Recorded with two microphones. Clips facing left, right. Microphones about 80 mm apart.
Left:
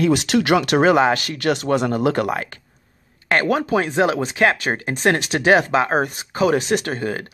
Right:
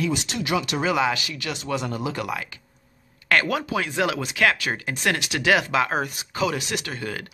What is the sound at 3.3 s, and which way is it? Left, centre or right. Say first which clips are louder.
Speech: left 4 dB; left.